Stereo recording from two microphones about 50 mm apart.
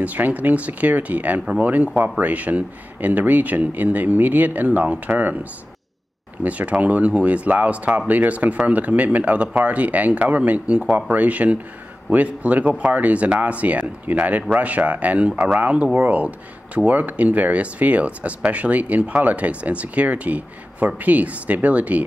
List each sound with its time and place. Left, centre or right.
0.0 s speech: right